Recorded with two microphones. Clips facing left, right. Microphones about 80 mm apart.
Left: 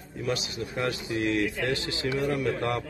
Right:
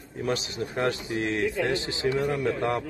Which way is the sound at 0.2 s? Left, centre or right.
Right.